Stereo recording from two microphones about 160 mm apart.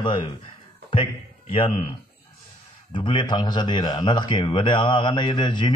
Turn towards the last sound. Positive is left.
turn(degrees=30)  # may be behind; listen again after turning